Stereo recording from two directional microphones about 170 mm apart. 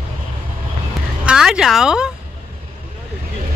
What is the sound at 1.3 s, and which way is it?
Speech, 5° right (ahead or behind).